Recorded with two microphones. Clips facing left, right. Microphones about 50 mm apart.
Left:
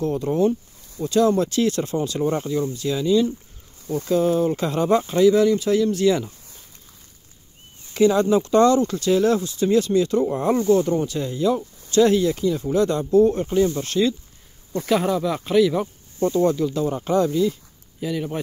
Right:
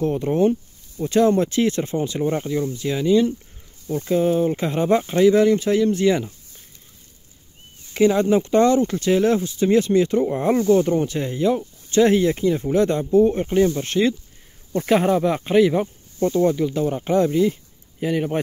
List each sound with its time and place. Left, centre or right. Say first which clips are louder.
0.0 s speech: right 1 dB; right
7.9 s speech: even; right